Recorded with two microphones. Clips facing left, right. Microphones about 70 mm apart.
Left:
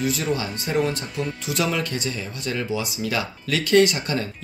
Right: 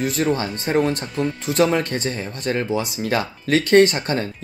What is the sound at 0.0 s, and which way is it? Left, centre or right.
Speech, right.